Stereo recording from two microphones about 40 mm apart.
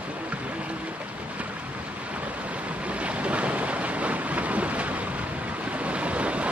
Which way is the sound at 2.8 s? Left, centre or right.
Right.